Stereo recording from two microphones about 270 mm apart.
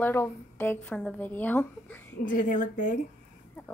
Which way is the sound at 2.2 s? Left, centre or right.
Left.